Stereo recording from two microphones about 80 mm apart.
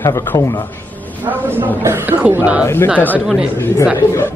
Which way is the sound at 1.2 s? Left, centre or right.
Right.